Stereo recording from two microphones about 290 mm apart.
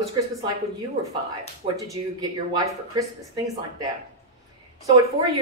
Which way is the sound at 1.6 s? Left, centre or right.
Centre.